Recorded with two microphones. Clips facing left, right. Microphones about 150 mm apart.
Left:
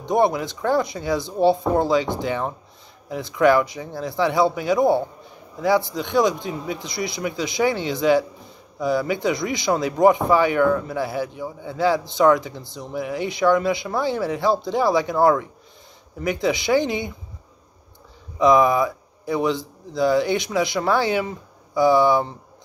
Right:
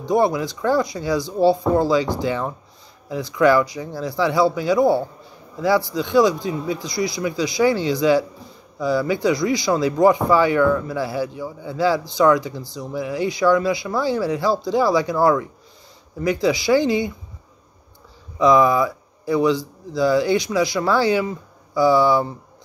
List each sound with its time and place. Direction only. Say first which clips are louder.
0.0 s a man's voice: right 1 dB; 20° left (ahead or behind)
18.4 s a man's voice: right 1 dB; 20° left (ahead or behind)